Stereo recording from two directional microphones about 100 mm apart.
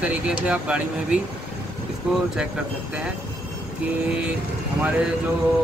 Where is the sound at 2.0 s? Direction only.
10° right (ahead or behind).